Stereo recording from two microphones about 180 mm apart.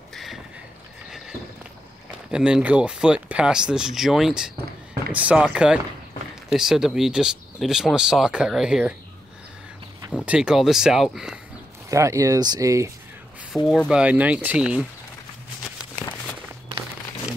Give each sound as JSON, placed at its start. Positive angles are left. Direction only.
{"t": 0.1, "sound": "boat", "side_deg": 0}
{"t": 2.3, "sound": "speech", "side_deg": -5}
{"t": 10.2, "sound": "speech", "side_deg": -5}
{"t": 11.9, "sound": "speech", "side_deg": -15}
{"t": 13.7, "sound": "speech", "side_deg": -5}